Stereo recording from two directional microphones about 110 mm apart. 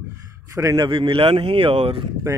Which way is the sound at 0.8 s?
50° right (ahead or behind).